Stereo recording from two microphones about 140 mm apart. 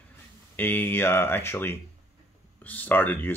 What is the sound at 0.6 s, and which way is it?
Speech, 15° left (ahead or behind).